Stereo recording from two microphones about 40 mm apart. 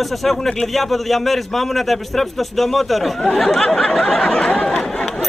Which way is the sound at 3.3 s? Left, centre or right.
Centre.